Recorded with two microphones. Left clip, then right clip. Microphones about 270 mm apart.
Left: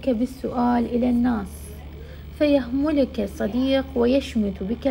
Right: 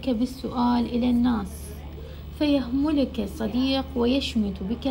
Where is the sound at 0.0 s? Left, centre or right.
Centre.